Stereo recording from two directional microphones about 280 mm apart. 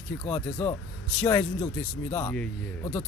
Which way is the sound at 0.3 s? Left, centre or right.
Centre.